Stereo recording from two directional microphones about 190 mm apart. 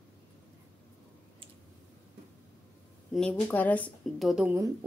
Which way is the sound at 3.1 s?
5° left (ahead or behind).